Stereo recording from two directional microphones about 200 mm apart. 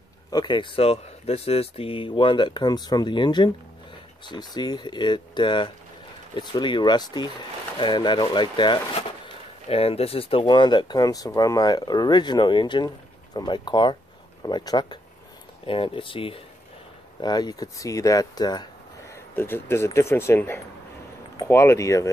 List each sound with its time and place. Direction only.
0.3 s speech: 20° left (ahead or behind)